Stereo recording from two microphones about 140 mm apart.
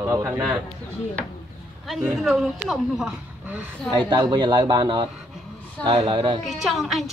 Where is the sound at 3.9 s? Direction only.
30° right (ahead or behind).